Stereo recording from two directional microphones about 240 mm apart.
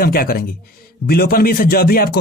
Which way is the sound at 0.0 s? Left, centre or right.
Left.